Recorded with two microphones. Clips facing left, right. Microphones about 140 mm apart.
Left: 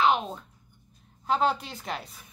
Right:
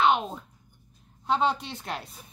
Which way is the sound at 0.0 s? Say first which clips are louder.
Right 1 dB; centre (ahead or behind).